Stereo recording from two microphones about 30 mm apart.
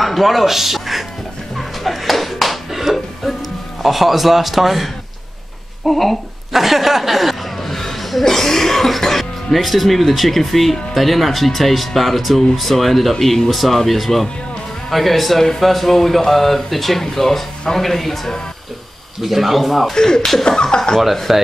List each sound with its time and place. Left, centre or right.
0.0 s speech: centre
1.6 s a sound: centre
2.7 s music: centre
3.8 s speech: centre
7.6 s cough: centre
9.0 s speech: centre
19.2 s speech: centre
19.9 s speech: centre
20.4 s a sound: left
21.3 s speech: centre